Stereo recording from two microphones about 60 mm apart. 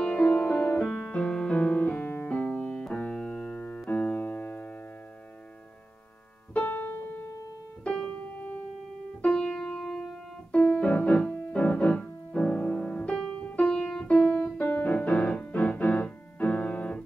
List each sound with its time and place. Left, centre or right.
0.0 s music: left
0.7 s music: centre; by 2.4 s left
2.4 s keyboard: left
3.9 s piano: left
6.6 s music: left
7.8 s piano: centre
8.1 s piano: left
9.2 s music: centre
10.5 s piano: left